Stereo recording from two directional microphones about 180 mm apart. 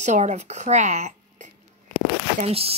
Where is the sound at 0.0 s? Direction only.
40° right (ahead or behind).